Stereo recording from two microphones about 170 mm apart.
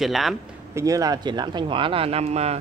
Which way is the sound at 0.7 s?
20° right (ahead or behind).